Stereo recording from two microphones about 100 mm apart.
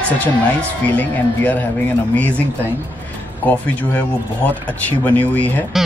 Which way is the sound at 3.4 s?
15° left (ahead or behind).